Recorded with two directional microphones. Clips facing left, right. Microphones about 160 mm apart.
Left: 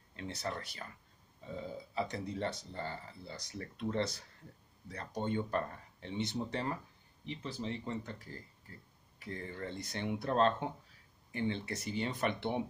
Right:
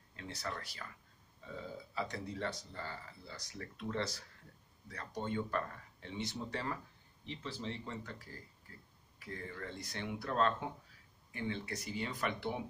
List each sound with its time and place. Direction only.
0.1 s speech: 25° left (ahead or behind)
9.2 s speech: 30° left (ahead or behind)